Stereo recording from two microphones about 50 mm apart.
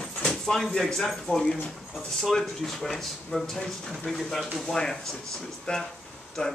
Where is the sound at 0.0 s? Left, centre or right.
Centre.